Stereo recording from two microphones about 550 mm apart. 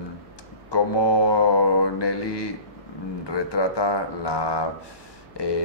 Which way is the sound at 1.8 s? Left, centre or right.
Left.